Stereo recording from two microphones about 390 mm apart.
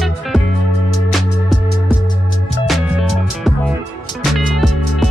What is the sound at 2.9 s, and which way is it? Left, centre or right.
Music, left.